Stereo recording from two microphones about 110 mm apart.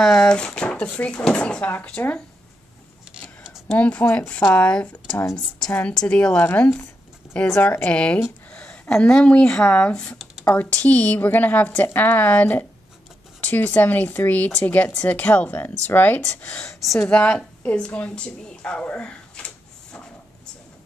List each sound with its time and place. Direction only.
0.0 s speech: 5° left (ahead or behind)
3.1 s a sound: 5° right (ahead or behind)
3.7 s speech: 15° left (ahead or behind)